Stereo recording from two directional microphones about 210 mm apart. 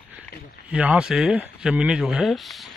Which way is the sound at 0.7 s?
5° right (ahead or behind).